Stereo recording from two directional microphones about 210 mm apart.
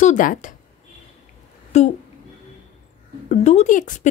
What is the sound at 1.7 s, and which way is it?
Speech, 30° left (ahead or behind).